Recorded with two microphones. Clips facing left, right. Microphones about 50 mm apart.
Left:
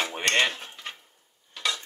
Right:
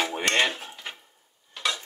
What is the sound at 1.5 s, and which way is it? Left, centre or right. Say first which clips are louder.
Stir: right 1 dB; centre.